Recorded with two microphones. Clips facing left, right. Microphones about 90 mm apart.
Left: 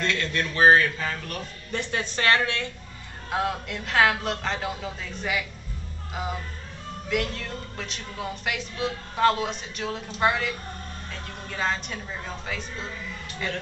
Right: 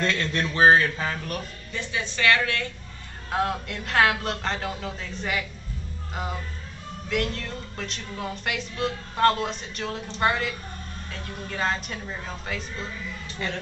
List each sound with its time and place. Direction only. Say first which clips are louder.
0.0 s a man's voice: right 1 dB; 30° right (ahead or behind)
1.7 s a woman's voice: left 2 dB; 55° left (ahead or behind)
2.2 s a woman's voice: right 1 dB; 30° left (ahead or behind)
3.3 s music: right 1 dB; centre (ahead or behind)